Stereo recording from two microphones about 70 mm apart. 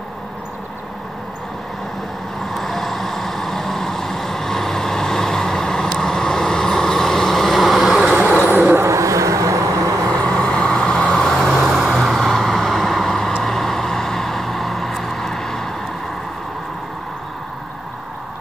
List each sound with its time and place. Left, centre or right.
2.4 s vehicle: centre
8.5 s vehicle: right
8.8 s vehicle: right
10.2 s vehicle: centre